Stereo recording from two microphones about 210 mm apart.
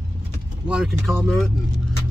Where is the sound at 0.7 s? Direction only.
Centre (ahead or behind).